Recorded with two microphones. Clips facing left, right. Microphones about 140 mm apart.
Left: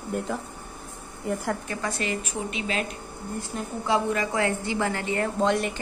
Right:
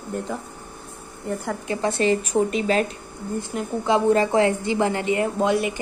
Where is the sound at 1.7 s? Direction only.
25° right (ahead or behind).